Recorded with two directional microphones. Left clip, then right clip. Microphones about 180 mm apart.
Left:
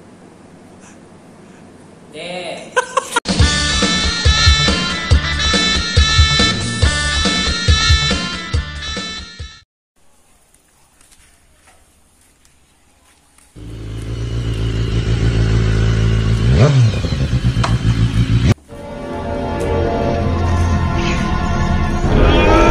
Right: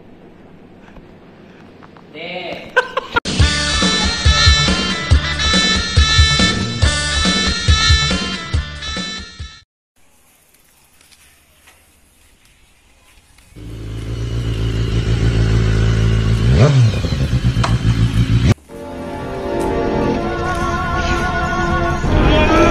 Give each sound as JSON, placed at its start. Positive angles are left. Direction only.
{"t": 2.7, "sound": "music", "side_deg": 10}
{"t": 13.6, "sound": "vehicle", "side_deg": 0}